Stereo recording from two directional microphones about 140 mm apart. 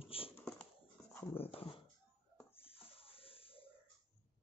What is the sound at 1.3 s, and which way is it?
Dog, 45° left (ahead or behind).